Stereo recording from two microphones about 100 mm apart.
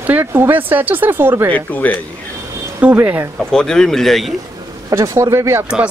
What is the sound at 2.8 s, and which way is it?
Speech, 15° right (ahead or behind).